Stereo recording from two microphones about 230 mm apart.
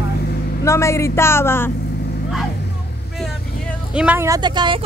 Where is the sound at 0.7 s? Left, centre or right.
Centre.